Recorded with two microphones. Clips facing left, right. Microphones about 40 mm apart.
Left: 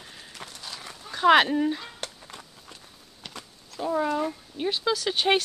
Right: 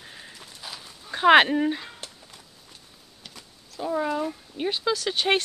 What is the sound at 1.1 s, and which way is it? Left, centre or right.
Speech, right.